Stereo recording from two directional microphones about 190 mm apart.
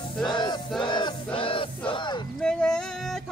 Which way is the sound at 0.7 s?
25° left (ahead or behind).